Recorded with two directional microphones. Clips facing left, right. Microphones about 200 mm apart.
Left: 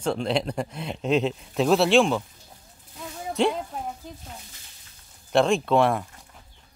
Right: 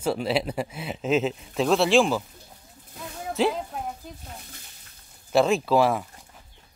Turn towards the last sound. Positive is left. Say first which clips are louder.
# even
turn(degrees=-5)  # may be behind; listen again after turning